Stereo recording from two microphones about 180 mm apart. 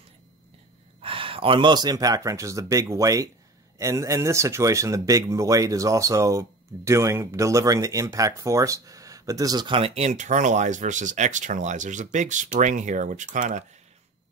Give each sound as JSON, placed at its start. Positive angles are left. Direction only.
{"t": 1.0, "sound": "speech", "side_deg": -30}